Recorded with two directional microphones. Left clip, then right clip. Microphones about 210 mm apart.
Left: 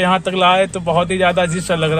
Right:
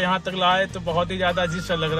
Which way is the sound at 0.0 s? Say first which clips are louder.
Left 7 dB; centre (ahead or behind).